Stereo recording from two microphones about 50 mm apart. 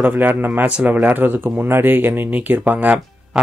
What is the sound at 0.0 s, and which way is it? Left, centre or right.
Speech, right.